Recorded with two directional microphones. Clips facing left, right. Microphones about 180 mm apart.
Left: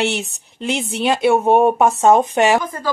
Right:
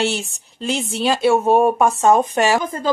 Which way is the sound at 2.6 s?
25° right (ahead or behind).